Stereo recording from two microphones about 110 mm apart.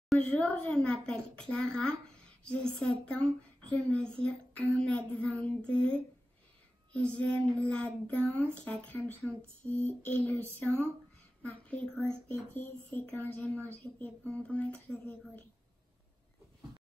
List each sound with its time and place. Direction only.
0.1 s child singing: 10° left (ahead or behind)
11.7 s child singing: 10° left (ahead or behind)
13.8 s speech: 25° left (ahead or behind)
14.2 s child singing: 10° left (ahead or behind)